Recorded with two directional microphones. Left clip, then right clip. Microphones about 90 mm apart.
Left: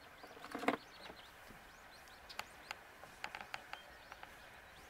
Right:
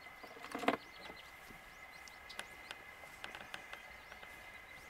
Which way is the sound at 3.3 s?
20° right (ahead or behind).